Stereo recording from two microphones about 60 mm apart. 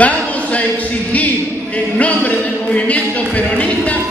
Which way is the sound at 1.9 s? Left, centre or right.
Left.